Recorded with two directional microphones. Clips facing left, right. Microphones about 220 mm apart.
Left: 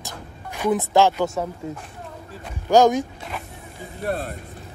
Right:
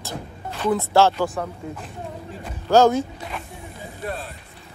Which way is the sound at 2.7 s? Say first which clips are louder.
Even; 15° left (ahead or behind).